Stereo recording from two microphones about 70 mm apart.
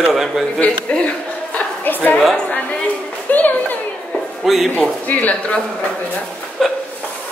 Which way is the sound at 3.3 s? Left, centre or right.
Left.